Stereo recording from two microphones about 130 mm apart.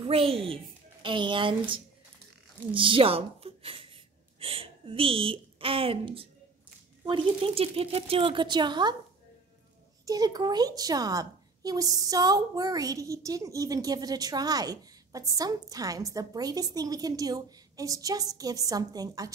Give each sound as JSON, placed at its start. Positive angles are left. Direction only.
{"t": 0.0, "sound": "speech", "side_deg": -45}
{"t": 10.0, "sound": "a woman's voice", "side_deg": -30}